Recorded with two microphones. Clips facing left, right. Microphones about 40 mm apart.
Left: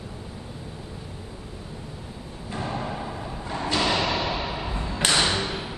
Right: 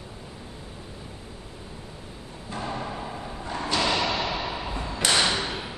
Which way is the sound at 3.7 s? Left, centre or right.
Centre.